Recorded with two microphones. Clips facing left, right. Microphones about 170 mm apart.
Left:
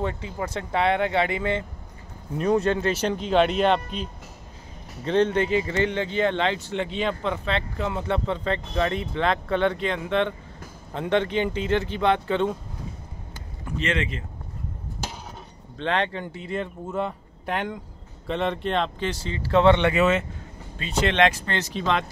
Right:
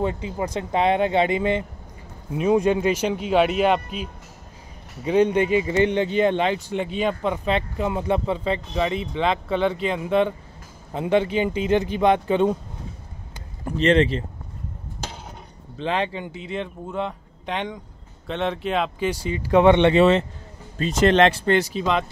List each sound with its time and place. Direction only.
0.0 s speech: 20° right (ahead or behind)
13.7 s speech: 35° right (ahead or behind)
15.8 s speech: 5° right (ahead or behind)
19.9 s speech: 30° right (ahead or behind)
21.5 s speech: 10° right (ahead or behind)